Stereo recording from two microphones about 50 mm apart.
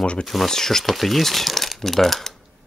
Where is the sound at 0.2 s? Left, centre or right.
Centre.